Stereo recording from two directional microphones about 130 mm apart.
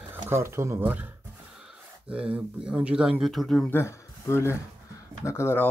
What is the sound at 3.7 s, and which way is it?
Speech, 20° left (ahead or behind).